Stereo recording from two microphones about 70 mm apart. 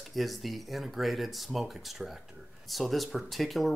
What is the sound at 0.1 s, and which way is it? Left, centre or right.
Speech, centre.